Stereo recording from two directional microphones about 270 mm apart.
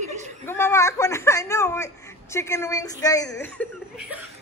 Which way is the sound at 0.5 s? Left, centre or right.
Centre.